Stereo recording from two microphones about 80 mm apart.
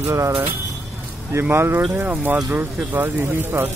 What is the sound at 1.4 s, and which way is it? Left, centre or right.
Speech, right.